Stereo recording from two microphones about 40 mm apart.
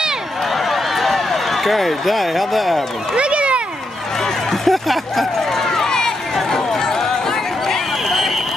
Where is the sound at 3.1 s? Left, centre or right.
Right.